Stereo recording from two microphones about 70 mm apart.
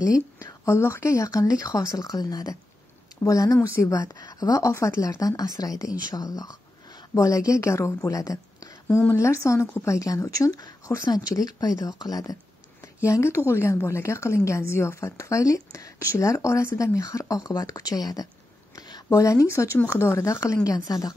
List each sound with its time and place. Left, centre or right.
0.0 s speech: left
0.7 s a woman's voice: left
3.3 s a woman's voice: left
7.2 s a woman's voice: left
9.1 s a woman's voice: left
11.1 s a woman's voice: left
13.0 s a woman's voice: left
18.8 s a sound: left
19.0 s a woman's voice: left
20.6 s a woman's voice: left